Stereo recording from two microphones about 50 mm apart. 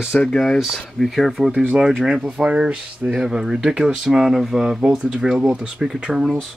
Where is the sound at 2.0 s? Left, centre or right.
Centre.